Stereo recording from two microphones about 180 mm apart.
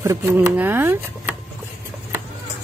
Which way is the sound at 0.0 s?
15° right (ahead or behind).